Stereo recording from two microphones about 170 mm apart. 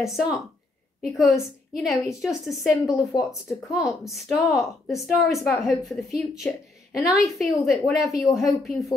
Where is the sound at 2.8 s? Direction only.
20° left (ahead or behind).